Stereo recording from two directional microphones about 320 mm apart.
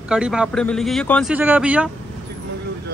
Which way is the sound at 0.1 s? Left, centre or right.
Centre.